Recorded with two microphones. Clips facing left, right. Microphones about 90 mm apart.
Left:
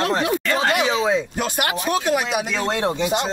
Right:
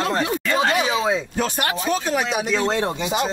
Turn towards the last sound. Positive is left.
turn(degrees=0)  # may be behind; listen again after turning